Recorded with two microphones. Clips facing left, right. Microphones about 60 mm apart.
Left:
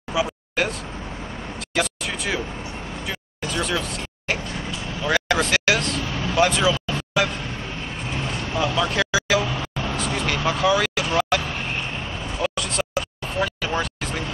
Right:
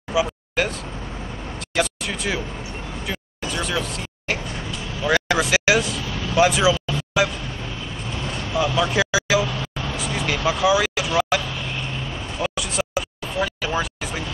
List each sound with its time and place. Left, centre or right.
0.1 s a sound: centre
5.0 s speech: centre
8.7 s vehicle: centre
9.9 s a sound: centre
10.6 s speech: centre
11.1 s vehicle: centre
11.4 s vehicle: left
12.4 s vehicle: centre